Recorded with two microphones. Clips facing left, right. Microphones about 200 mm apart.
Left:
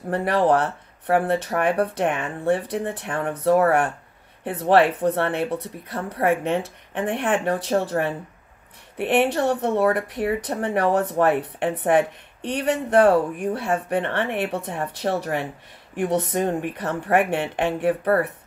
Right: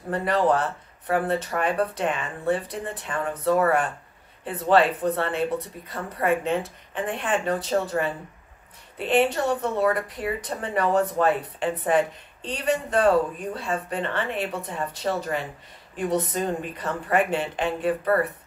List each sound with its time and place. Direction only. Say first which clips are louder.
0.1 s speech: left 3 dB; 65° left (ahead or behind)